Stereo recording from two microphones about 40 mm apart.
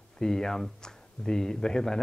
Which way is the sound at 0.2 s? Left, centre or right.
Centre.